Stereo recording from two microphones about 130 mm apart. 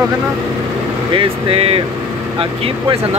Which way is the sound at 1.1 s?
45° right (ahead or behind).